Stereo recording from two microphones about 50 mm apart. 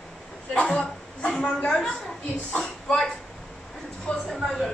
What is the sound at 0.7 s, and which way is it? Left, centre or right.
Chuckle, centre.